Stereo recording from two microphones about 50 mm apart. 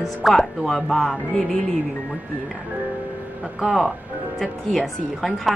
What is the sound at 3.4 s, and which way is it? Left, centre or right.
Speech, centre.